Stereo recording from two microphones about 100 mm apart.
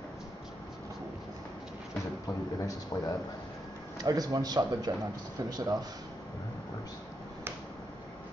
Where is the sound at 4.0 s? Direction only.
40° right (ahead or behind).